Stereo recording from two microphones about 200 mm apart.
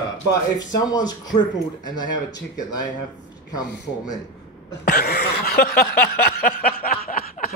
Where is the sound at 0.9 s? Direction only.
20° left (ahead or behind).